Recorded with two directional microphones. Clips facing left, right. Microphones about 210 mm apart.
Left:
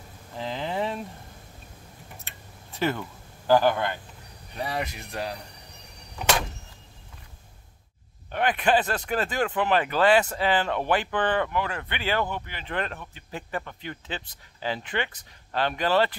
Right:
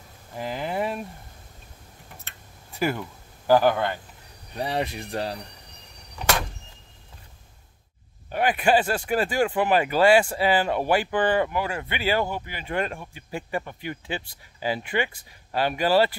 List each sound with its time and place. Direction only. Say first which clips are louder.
0.4 s a sound: right 1 dB; 10° right (ahead or behind)
2.8 s speech: right 1 dB; 10° right (ahead or behind)
4.6 s speech: right 4 dB; 30° right (ahead or behind)
8.3 s speech: right 2 dB; 10° right (ahead or behind)